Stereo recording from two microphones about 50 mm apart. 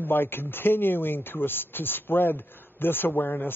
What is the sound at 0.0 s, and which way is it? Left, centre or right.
A woman's voice, left.